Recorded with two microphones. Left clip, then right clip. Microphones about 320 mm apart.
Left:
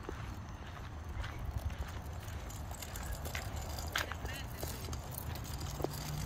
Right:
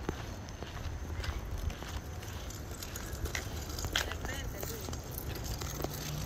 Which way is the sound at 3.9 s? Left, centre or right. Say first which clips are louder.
Right 3 dB; right.